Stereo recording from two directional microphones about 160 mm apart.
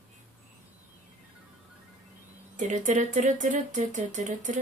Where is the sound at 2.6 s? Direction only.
50° right (ahead or behind).